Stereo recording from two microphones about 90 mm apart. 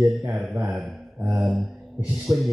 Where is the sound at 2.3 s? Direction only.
20° right (ahead or behind).